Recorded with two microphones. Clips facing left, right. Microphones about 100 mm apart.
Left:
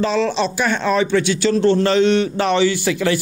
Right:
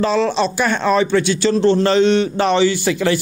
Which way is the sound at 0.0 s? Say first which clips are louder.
Right 2 dB; 40° right (ahead or behind).